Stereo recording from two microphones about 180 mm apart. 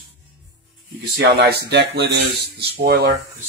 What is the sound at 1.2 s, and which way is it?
Speech, 70° right (ahead or behind).